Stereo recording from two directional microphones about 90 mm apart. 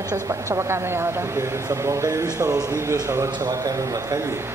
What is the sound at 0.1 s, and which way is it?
A woman's voice, 35° right (ahead or behind).